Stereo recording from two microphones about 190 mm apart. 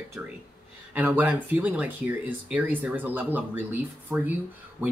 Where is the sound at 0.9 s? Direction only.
10° right (ahead or behind).